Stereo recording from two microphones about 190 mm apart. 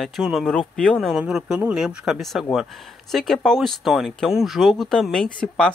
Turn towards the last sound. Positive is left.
turn(degrees=5)  # may be behind; listen again after turning